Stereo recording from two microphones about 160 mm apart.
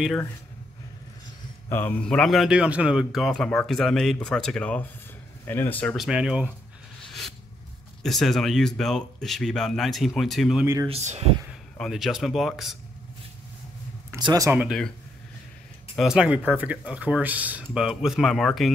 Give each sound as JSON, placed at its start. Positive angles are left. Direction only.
{"t": 1.7, "sound": "a man's voice", "side_deg": 10}
{"t": 5.9, "sound": "a man's voice", "side_deg": -5}
{"t": 7.1, "sound": "a sound", "side_deg": 0}
{"t": 8.0, "sound": "a man's voice", "side_deg": 0}
{"t": 10.6, "sound": "speech", "side_deg": -15}
{"t": 10.9, "sound": "speech", "side_deg": -40}
{"t": 11.8, "sound": "a man's voice", "side_deg": 0}
{"t": 14.1, "sound": "speech", "side_deg": -25}
{"t": 14.6, "sound": "a man's voice", "side_deg": 0}
{"t": 16.0, "sound": "speech", "side_deg": -5}